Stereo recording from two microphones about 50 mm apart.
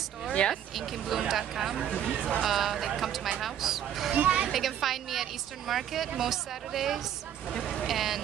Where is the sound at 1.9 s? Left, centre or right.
Left.